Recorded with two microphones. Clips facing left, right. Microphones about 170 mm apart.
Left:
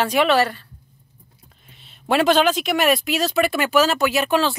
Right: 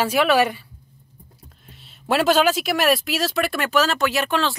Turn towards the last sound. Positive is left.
turn(degrees=5)  # may be behind; listen again after turning